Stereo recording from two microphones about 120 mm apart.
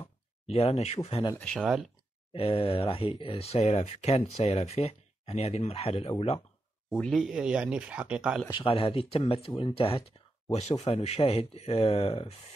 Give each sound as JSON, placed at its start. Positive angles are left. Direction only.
{"t": 0.0, "sound": "speech", "side_deg": 55}
{"t": 1.6, "sound": "speech", "side_deg": -5}
{"t": 2.3, "sound": "speech", "side_deg": 50}
{"t": 7.0, "sound": "speech", "side_deg": 0}
{"t": 8.5, "sound": "speech", "side_deg": 50}
{"t": 10.5, "sound": "speech", "side_deg": 65}